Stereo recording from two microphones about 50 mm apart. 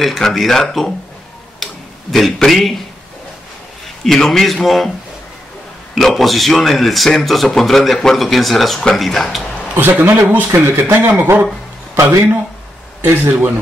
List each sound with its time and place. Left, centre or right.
0.0 s a man's voice: centre
1.6 s a sound: centre
4.0 s a man's voice: centre
5.9 s a man's voice: centre
9.8 s speech: right
13.0 s speech: right